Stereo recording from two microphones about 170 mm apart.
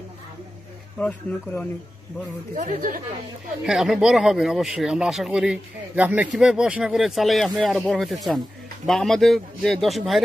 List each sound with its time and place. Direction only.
0.9 s speech: 5° left (ahead or behind)
2.5 s speech: 55° right (ahead or behind)
3.6 s speech: centre (ahead or behind)